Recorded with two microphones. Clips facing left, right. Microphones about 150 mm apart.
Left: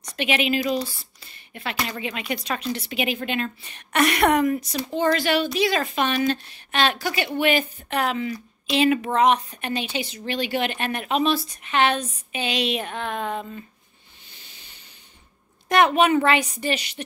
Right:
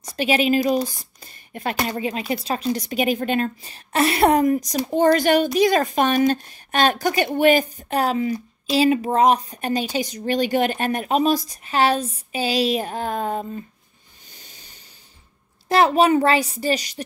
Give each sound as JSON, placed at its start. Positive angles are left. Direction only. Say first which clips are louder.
{"t": 0.0, "sound": "a woman's voice", "louder": "right 4 dB", "side_deg": -35}
{"t": 4.6, "sound": "a woman's voice", "louder": "right 5 dB", "side_deg": -45}
{"t": 14.3, "sound": "a sound", "louder": "right 3 dB", "side_deg": -40}
{"t": 15.7, "sound": "a woman's voice", "louder": "right 2 dB", "side_deg": -30}